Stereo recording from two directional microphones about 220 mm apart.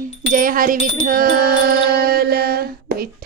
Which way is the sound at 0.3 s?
40° right (ahead or behind).